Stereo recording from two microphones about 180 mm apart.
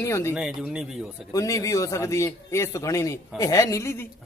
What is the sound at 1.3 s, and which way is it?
A man's voice, 20° left (ahead or behind).